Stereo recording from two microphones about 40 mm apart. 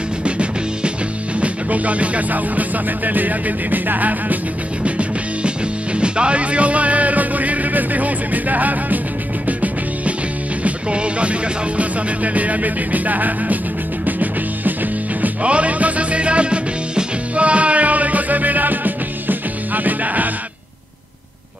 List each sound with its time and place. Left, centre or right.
0.2 s music: right
4.8 s music: right
10.6 s music: right
15.4 s music: right